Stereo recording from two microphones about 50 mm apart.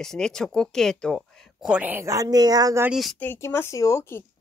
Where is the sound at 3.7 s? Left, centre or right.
Left.